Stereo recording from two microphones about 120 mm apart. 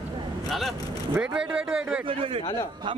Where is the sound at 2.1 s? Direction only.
50° right (ahead or behind).